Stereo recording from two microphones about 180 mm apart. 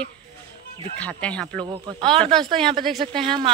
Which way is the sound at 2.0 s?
30° right (ahead or behind).